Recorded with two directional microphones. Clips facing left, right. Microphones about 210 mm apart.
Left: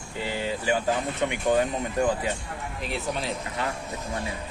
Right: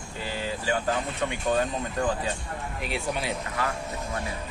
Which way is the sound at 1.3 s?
20° left (ahead or behind).